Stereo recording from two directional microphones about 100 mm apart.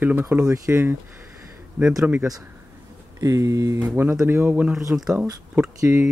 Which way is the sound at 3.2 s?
30° right (ahead or behind).